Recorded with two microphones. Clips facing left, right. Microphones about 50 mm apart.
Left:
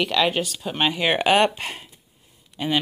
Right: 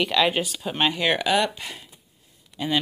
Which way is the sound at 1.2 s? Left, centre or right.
Left.